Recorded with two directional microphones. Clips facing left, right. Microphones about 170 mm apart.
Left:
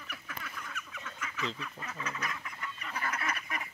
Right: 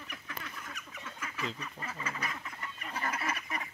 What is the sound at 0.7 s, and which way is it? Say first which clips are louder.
Duck: left 1 dB; 30° right (ahead or behind).